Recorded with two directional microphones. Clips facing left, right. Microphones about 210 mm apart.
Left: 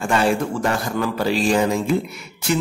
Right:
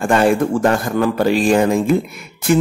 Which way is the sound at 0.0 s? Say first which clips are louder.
Right 5 dB; 50° right (ahead or behind).